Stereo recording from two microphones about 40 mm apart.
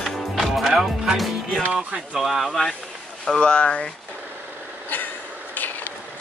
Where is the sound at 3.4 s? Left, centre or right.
Left.